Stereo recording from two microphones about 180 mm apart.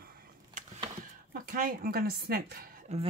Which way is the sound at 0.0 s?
55° right (ahead or behind).